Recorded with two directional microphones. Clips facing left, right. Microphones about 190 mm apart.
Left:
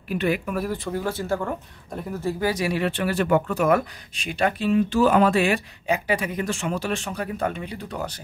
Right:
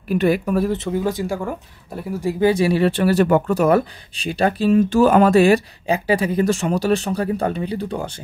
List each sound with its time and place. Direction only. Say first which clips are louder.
0.1 s speech: right 6 dB; 40° right (ahead or behind)
0.7 s speech: right 6 dB; 20° right (ahead or behind)
2.5 s speech: right 7 dB; 30° right (ahead or behind)